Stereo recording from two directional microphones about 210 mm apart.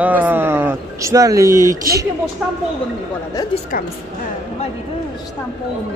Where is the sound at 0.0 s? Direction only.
10° right (ahead or behind).